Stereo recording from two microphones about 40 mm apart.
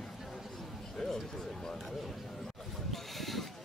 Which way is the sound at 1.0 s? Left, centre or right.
Centre.